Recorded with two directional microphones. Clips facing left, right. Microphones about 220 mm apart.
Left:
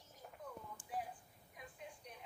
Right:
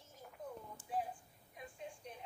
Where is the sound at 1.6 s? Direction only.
25° right (ahead or behind).